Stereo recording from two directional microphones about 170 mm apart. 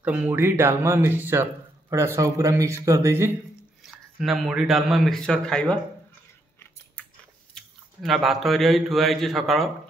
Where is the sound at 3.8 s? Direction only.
Centre (ahead or behind).